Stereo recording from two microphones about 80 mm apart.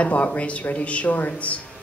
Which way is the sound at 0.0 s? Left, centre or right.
Centre.